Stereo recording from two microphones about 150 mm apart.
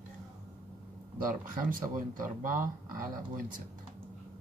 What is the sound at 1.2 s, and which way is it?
Speech, 65° right (ahead or behind).